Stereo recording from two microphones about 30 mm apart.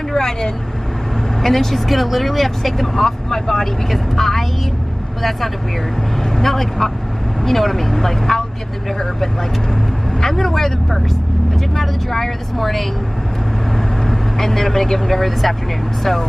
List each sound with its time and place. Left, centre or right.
0.1 s speech: centre
6.2 s speech: centre